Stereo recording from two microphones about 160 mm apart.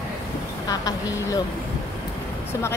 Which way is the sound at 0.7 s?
25° left (ahead or behind).